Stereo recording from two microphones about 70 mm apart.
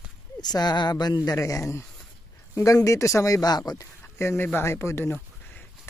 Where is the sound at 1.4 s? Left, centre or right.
Left.